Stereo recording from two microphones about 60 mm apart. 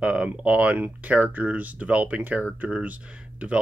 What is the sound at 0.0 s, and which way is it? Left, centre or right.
Speech, centre.